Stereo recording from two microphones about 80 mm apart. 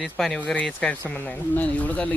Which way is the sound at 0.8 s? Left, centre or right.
Centre.